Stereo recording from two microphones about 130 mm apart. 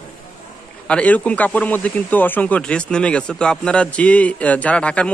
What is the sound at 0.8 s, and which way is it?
Speech, 10° left (ahead or behind).